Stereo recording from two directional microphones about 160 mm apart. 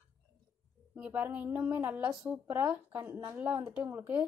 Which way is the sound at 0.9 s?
10° right (ahead or behind).